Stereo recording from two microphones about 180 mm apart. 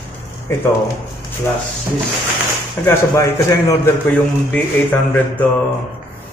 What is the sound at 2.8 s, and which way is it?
A man's voice, 15° left (ahead or behind).